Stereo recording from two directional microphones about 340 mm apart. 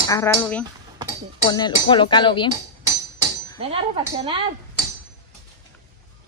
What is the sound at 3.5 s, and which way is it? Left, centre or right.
Speech, centre.